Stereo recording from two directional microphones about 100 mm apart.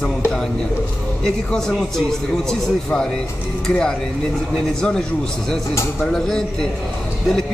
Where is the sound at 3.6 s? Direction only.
5° left (ahead or behind).